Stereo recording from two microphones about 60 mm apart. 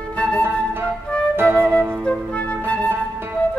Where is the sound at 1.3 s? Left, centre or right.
Right.